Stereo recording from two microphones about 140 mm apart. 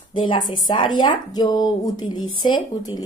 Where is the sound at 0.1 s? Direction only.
35° left (ahead or behind).